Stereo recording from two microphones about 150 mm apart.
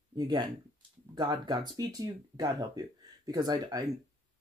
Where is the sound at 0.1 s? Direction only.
30° right (ahead or behind).